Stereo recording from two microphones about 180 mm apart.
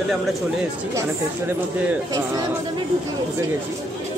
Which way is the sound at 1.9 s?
20° right (ahead or behind).